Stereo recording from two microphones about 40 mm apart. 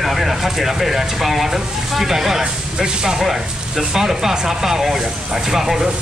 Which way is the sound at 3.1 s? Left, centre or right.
Centre.